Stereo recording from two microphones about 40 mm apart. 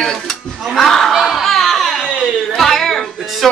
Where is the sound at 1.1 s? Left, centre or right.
Centre.